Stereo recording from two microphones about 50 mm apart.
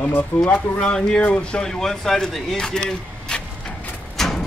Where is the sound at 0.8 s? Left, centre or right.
Centre.